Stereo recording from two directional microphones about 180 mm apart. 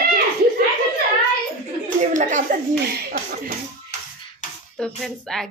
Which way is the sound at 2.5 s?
50° right (ahead or behind).